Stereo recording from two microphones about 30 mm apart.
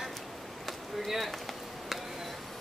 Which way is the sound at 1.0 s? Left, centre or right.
Centre.